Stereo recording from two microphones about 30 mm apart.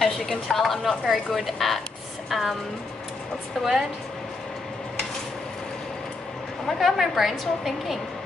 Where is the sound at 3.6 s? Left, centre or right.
Centre.